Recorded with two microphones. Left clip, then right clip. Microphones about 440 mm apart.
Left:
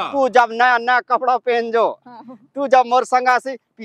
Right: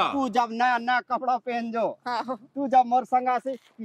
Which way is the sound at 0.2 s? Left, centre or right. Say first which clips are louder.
Left 10 dB; left.